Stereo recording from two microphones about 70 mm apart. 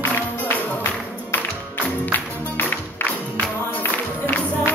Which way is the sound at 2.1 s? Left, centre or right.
Left.